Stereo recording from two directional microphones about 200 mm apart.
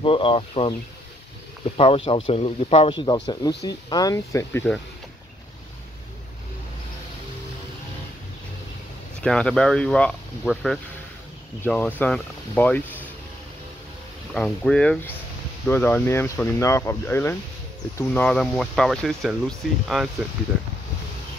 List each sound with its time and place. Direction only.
0.0 s speech: 25° left (ahead or behind)
1.8 s speech: 30° left (ahead or behind); by 4.7 s 15° left (ahead or behind)
9.2 s speech: 5° left (ahead or behind)
14.3 s speech: 5° left (ahead or behind)